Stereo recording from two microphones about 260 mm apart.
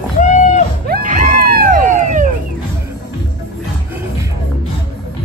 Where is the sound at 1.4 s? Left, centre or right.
Left.